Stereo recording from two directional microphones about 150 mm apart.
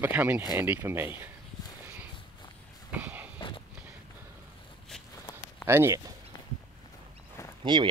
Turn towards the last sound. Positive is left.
turn(degrees=-30)  # may be behind; listen again after turning